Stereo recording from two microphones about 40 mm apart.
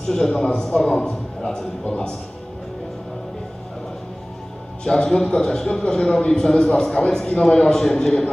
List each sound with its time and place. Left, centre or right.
0.1 s a man's voice: centre
4.8 s a man's voice: centre